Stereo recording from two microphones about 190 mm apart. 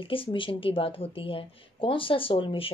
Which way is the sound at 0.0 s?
30° left (ahead or behind).